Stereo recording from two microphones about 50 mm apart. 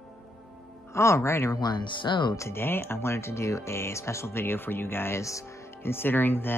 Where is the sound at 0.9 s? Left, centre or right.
Left.